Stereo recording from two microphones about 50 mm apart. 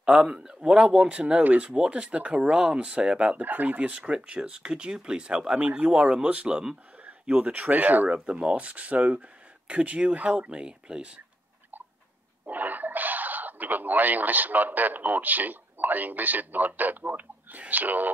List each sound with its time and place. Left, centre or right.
0.0 s speech: centre
3.3 s speech: right
8.1 s speech: right
12.4 s speech: right